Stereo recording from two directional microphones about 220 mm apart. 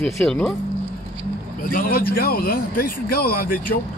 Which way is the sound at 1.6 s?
40° left (ahead or behind).